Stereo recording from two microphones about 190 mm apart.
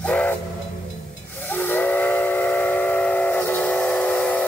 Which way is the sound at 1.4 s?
10° left (ahead or behind).